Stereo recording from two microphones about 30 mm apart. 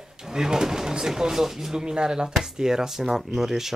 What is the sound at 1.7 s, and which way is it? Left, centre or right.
Speech, right.